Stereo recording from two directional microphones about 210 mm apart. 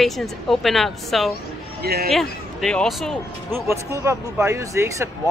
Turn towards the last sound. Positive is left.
turn(degrees=-15)  # may be behind; listen again after turning